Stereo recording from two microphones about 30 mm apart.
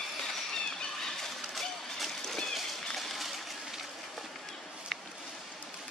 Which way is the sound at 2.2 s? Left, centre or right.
Centre.